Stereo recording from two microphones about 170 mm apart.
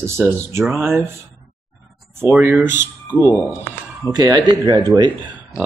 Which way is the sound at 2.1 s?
10° right (ahead or behind).